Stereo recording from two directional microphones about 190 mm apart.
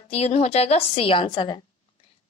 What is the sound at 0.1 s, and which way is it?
A woman's voice, 35° left (ahead or behind).